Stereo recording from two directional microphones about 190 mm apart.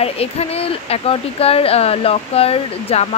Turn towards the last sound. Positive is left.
turn(degrees=30)  # may be behind; listen again after turning